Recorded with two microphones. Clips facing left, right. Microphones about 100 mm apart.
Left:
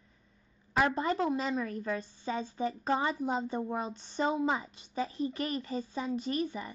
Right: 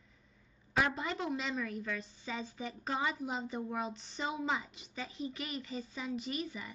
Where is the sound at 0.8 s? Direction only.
40° left (ahead or behind).